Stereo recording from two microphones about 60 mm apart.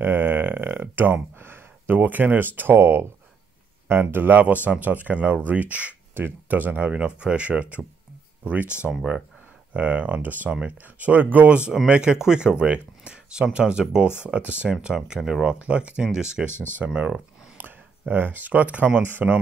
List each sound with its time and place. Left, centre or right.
0.0 s a sound: right
1.4 s speech: right; by 15.0 s centre
15.0 s speech: centre
15.4 s speech: right
16.5 s speech: left
16.8 s speech: centre
17.6 s speech: right